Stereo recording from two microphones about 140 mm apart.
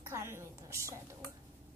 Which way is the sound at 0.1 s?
20° right (ahead or behind).